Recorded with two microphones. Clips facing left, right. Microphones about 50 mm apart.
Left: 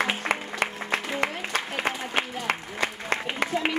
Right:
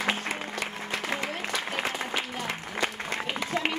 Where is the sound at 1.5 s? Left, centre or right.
Left.